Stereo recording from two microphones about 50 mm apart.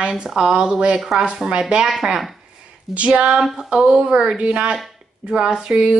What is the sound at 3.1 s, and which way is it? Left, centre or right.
Speech, right.